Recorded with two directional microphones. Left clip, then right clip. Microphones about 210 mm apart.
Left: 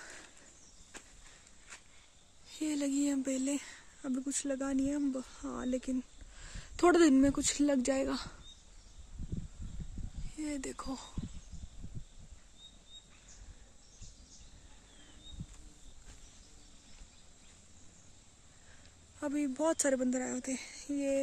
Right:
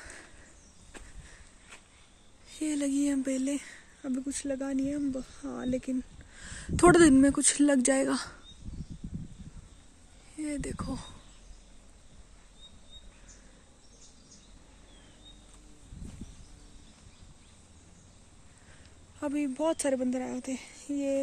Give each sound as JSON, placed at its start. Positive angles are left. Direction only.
{"t": 0.0, "sound": "a sound", "side_deg": 10}
{"t": 2.5, "sound": "speech", "side_deg": 10}
{"t": 10.3, "sound": "speech", "side_deg": 10}
{"t": 19.1, "sound": "speech", "side_deg": 10}